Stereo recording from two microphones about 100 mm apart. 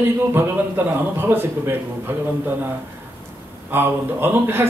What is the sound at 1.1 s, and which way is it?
Speech, 25° right (ahead or behind).